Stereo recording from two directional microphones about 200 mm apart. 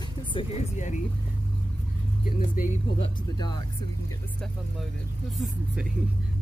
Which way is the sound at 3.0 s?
20° left (ahead or behind).